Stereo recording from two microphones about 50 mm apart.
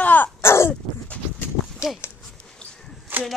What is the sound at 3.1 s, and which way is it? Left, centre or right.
Chop, right.